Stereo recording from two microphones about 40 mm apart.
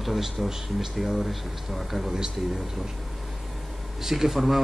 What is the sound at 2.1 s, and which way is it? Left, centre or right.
Speech, centre.